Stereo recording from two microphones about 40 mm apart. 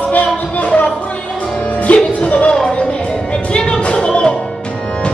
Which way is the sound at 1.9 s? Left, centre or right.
Left.